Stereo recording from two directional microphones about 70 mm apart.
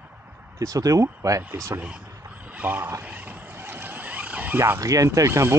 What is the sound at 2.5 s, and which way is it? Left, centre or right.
Speech, right.